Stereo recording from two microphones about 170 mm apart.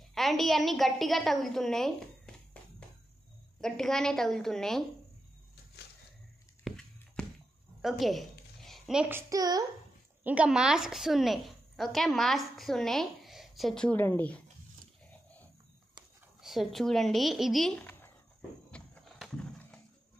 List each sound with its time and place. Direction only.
0.1 s a woman's voice: centre (ahead or behind)
3.6 s a woman's voice: 5° left (ahead or behind)
6.6 s a sound: 5° left (ahead or behind)
9.1 s a child's voice: 20° right (ahead or behind)
10.2 s a woman's voice: 5° right (ahead or behind); by 14.4 s 10° left (ahead or behind)
16.3 s speech: centre (ahead or behind)
18.7 s wild animals: centre (ahead or behind)